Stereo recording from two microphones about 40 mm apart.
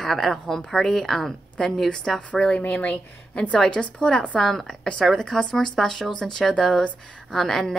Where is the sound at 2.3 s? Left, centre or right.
Left.